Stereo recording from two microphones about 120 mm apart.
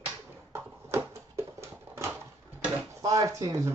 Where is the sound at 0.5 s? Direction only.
20° right (ahead or behind).